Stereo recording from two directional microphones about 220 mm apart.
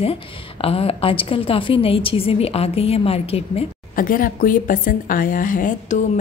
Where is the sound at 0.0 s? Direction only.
25° left (ahead or behind).